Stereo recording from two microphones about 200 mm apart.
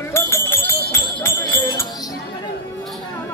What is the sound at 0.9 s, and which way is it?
Jingle bell, 15° left (ahead or behind).